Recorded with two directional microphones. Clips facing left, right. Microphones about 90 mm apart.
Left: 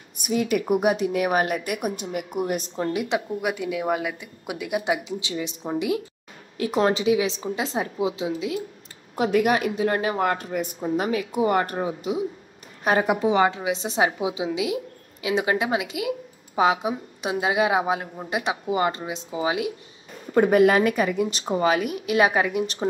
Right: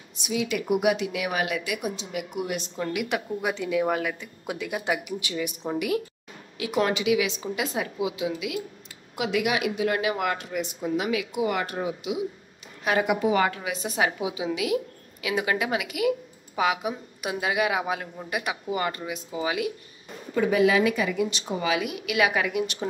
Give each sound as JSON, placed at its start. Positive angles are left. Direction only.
{"t": 0.1, "sound": "a woman's voice", "side_deg": 50}
{"t": 3.3, "sound": "a woman's voice", "side_deg": 10}
{"t": 6.6, "sound": "speech", "side_deg": 35}
{"t": 9.1, "sound": "speech", "side_deg": 40}
{"t": 20.3, "sound": "speech", "side_deg": 50}